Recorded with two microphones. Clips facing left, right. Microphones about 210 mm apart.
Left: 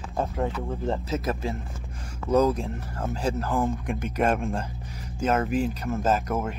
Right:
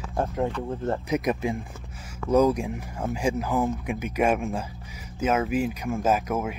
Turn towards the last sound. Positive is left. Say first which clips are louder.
# right 1 dB
turn(degrees=-10)  # may be behind; listen again after turning